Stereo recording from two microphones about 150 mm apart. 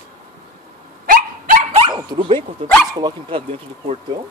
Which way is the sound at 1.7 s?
40° right (ahead or behind).